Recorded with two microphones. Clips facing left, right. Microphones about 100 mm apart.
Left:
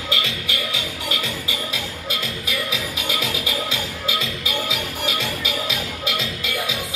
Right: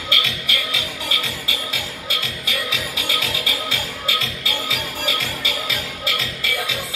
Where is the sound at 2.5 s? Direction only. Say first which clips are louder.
Right 1 dB; centre (ahead or behind).